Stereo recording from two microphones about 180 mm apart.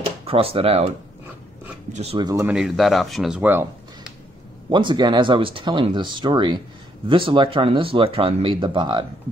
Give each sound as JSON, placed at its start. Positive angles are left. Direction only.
{"t": 0.3, "sound": "speech", "side_deg": -30}
{"t": 2.1, "sound": "speech", "side_deg": -20}
{"t": 2.4, "sound": "speech", "side_deg": -5}
{"t": 4.6, "sound": "speech", "side_deg": -25}